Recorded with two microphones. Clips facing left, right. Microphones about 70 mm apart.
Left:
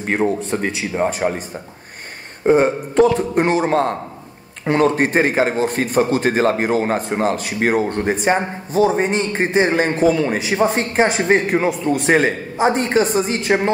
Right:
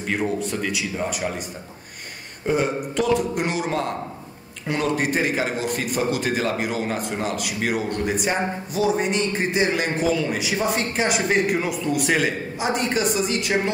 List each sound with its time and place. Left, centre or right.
0.0 s a man's voice: left
2.4 s a man's voice: left